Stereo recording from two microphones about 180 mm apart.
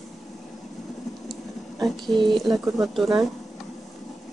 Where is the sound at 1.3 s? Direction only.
Centre (ahead or behind).